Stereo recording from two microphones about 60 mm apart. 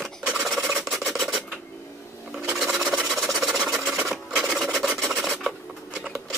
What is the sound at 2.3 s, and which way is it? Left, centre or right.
Filing, centre.